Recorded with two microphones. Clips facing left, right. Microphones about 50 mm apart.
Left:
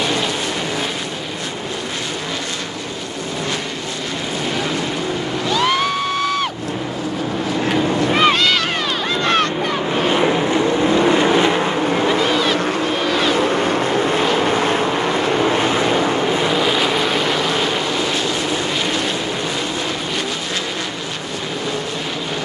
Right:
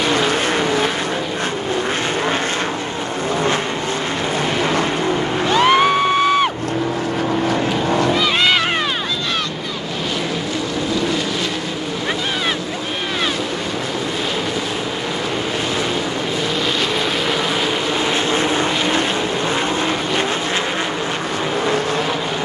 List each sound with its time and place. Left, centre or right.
5.5 s music: right
10.2 s vehicle: left
16.4 s vehicle: centre